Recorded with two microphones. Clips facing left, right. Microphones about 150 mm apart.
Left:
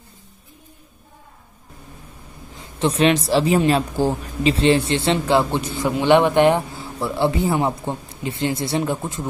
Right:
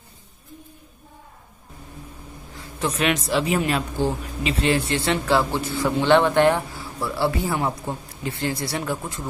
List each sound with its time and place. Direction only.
2.5 s a woman's voice: 25° left (ahead or behind)